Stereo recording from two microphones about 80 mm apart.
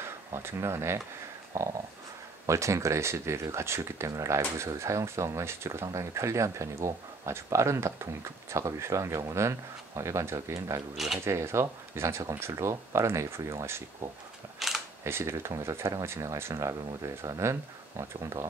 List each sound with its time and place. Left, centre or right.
0.0 s speech: right
14.6 s camera: centre
15.0 s speech: right